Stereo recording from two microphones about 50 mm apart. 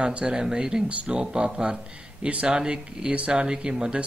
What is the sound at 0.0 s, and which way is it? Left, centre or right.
Speech, centre.